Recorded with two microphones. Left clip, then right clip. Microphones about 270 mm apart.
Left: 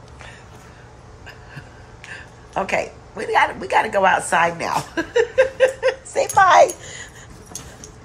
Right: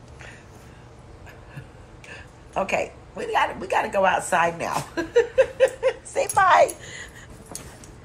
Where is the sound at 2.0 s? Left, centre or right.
Centre.